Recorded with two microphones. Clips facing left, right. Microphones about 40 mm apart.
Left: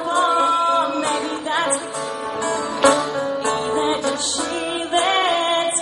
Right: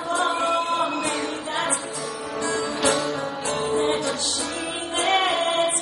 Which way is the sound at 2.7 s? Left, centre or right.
Left.